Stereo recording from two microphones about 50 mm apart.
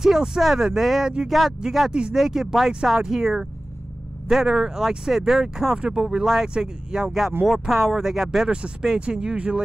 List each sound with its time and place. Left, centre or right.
0.0 s speech: centre
7.1 s speech: centre
9.0 s speech: centre